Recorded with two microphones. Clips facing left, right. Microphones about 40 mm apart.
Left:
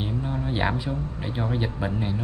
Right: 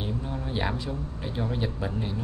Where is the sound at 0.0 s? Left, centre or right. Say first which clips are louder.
Left 4 dB; centre.